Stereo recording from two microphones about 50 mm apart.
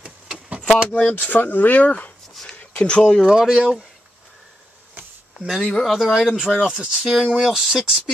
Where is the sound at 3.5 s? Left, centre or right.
Centre.